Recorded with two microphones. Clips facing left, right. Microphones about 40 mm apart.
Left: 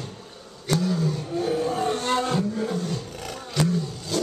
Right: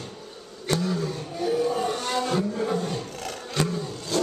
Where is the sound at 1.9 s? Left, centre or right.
Left.